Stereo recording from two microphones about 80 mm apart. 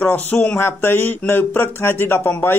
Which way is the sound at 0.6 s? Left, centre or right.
Left.